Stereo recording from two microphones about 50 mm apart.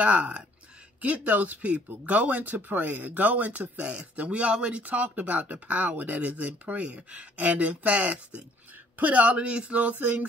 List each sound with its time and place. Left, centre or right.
0.0 s speech: right